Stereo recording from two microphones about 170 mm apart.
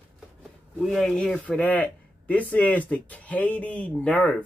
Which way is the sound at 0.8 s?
Centre (ahead or behind).